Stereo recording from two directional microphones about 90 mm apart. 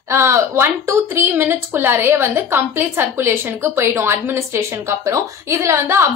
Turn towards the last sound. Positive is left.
turn(degrees=-30)  # may be behind; listen again after turning